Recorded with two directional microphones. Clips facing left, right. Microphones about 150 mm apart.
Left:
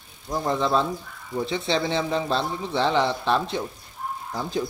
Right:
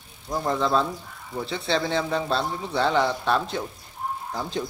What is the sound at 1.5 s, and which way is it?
Speech, 15° left (ahead or behind).